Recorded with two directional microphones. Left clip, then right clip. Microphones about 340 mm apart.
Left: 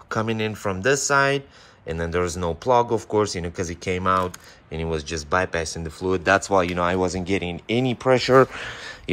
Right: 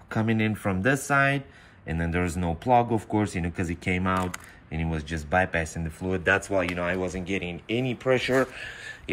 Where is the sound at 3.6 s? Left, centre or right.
Centre.